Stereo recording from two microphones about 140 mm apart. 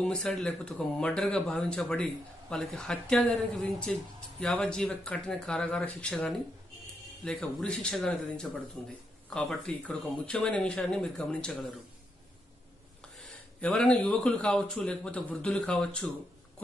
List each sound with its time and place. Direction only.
0.0 s speech: 5° left (ahead or behind)
13.6 s speech: 10° left (ahead or behind)